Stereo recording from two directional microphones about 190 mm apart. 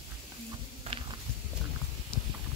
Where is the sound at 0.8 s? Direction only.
30° right (ahead or behind).